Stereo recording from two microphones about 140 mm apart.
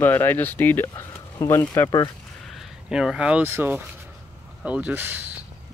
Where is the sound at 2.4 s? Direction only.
Centre (ahead or behind).